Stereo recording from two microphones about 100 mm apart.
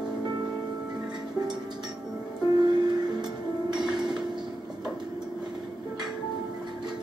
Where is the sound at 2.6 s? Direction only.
45° right (ahead or behind).